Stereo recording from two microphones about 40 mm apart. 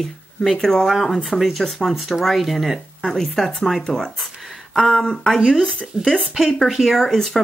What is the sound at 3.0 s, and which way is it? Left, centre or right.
Speech, centre.